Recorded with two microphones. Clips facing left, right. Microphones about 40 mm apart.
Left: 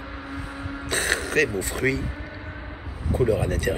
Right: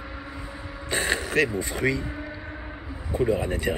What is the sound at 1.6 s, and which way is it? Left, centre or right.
Speech, centre.